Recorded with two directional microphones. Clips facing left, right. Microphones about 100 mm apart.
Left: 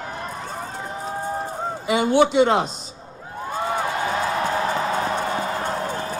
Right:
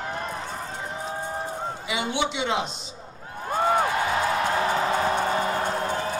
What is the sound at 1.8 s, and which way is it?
A man's voice, 45° left (ahead or behind).